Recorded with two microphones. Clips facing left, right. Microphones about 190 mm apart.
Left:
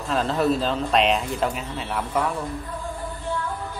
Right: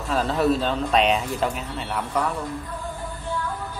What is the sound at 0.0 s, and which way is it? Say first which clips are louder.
Speech: even; centre (ahead or behind).